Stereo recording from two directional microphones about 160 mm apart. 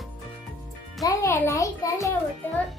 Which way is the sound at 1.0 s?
15° left (ahead or behind).